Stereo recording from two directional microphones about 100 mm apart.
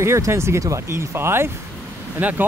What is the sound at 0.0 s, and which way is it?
Speech, 25° right (ahead or behind).